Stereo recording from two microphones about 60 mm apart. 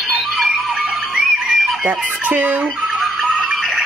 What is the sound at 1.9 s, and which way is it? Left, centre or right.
Fowl, right.